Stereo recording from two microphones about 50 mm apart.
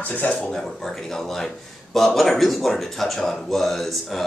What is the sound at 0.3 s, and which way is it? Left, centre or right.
A man's voice, centre.